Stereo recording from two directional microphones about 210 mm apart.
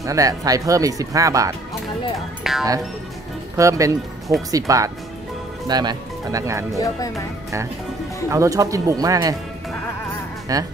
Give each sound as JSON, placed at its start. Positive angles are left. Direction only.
{"t": 0.0, "sound": "speech", "side_deg": -15}
{"t": 2.1, "sound": "speech", "side_deg": 0}
{"t": 3.5, "sound": "speech", "side_deg": -15}
{"t": 8.3, "sound": "speech", "side_deg": -15}
{"t": 10.5, "sound": "speech", "side_deg": -15}